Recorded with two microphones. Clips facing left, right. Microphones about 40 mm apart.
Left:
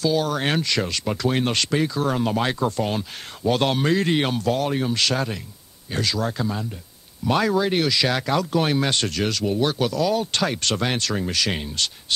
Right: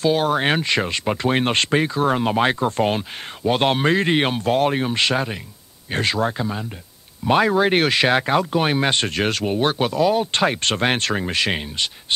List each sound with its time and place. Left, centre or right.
0.0 s speech: right
5.9 s speech: right